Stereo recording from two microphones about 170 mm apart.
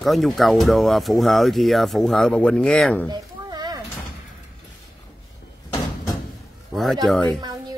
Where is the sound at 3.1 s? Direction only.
25° right (ahead or behind).